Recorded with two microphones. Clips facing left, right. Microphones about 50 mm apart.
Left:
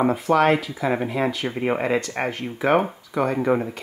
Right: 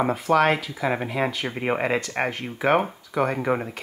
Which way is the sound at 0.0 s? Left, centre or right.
Centre.